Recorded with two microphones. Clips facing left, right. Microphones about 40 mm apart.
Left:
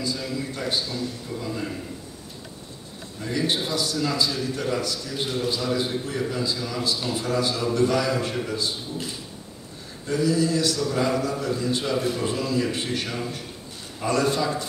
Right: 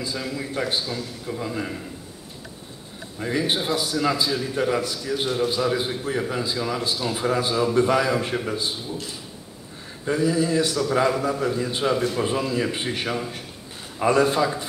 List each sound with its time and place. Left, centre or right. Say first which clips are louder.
0.0 s a man's voice: even; centre
3.2 s a man's voice: right 2 dB; right
10.0 s a man's voice: right 1 dB; right